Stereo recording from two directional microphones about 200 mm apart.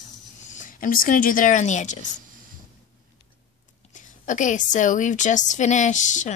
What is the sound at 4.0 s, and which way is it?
A woman's voice, 40° left (ahead or behind).